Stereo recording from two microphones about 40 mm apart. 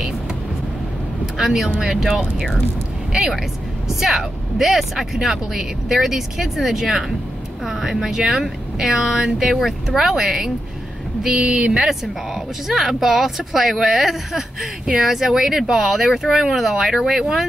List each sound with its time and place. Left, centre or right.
1.8 s speech: centre
4.0 s speech: centre
11.2 s speech: centre
11.8 s speech: centre